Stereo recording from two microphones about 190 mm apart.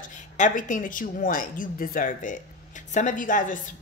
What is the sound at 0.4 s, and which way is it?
A woman's voice, 45° left (ahead or behind).